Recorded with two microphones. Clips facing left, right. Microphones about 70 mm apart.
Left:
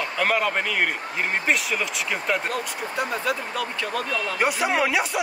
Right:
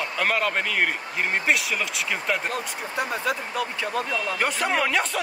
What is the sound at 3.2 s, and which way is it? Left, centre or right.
Speech, right.